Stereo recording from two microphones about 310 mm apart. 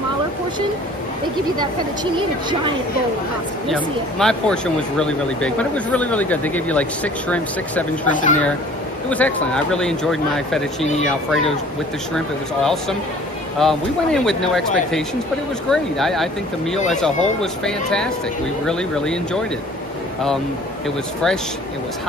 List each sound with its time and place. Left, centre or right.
3.6 s speech: centre
8.1 s speech: left
9.1 s speech: centre
13.6 s speech: centre